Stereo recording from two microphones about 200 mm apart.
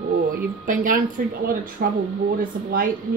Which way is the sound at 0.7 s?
40° right (ahead or behind).